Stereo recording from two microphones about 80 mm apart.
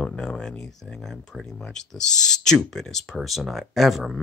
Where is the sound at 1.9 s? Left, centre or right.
Centre.